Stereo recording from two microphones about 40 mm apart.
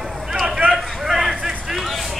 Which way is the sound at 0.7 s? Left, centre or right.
Centre.